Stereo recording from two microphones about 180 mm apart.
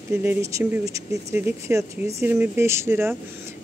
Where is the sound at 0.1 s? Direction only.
10° right (ahead or behind).